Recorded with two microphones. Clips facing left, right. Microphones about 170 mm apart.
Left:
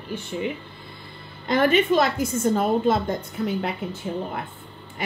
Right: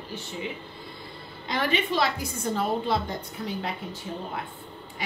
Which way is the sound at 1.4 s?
50° left (ahead or behind).